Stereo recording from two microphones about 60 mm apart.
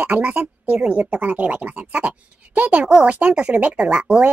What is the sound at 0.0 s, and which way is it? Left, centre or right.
Speech, right.